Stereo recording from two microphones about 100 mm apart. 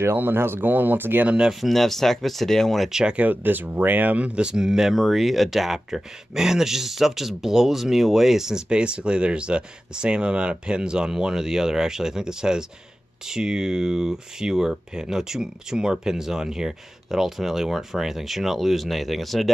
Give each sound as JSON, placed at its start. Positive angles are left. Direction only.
{"t": 0.0, "sound": "speech", "side_deg": -20}
{"t": 1.3, "sound": "speech", "side_deg": -5}